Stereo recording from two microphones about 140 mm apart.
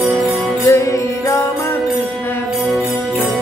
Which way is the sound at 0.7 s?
25° left (ahead or behind).